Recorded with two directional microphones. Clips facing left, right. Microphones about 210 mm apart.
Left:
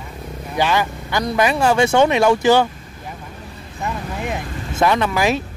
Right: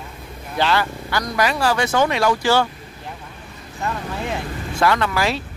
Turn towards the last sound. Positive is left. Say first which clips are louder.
# left 3 dB
turn(degrees=20)  # may be behind; listen again after turning